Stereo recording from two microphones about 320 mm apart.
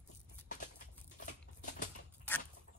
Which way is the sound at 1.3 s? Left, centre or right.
Left.